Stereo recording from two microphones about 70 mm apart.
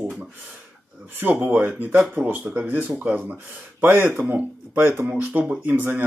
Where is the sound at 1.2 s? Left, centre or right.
Right.